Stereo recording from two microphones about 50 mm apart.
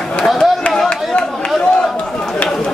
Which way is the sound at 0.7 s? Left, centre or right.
Centre.